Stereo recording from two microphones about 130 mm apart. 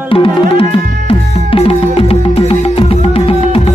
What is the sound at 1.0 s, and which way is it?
Music, 45° left (ahead or behind).